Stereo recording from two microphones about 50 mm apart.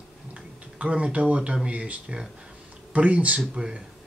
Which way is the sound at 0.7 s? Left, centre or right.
Centre.